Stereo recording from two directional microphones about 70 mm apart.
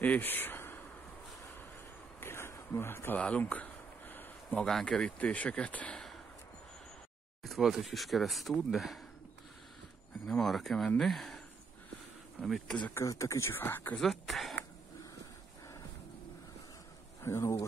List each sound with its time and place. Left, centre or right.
0.0 s a sound: left
2.1 s a sound: left
3.2 s a sound: centre
4.6 s speech: centre
7.4 s speech: centre
10.4 s speech: centre
12.9 s speech: left
13.9 s speech: centre
17.2 s speech: left